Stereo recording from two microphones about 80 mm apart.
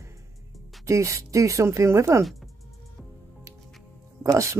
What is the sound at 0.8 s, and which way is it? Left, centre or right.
Speech, right.